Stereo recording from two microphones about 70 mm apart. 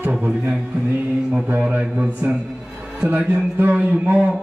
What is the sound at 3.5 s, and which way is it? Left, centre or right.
Music, right.